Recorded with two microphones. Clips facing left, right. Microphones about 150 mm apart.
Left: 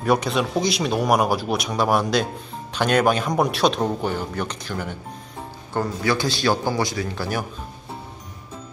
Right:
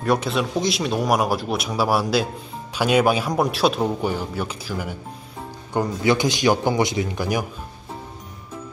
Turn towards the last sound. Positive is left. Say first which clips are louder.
# right 3 dB
turn(degrees=-15)  # may be behind; listen again after turning